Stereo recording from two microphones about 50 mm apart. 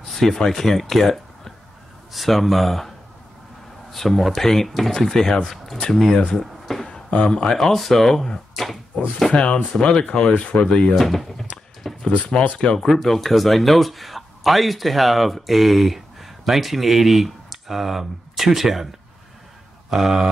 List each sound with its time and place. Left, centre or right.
0.1 s speech: centre
3.9 s speech: centre
6.1 s a sound: centre
7.1 s speech: centre
7.5 s speech: centre
9.3 s speech: centre
11.0 s a sound: centre
12.1 s speech: left
12.4 s speech: centre
12.7 s speech: centre
19.9 s speech: centre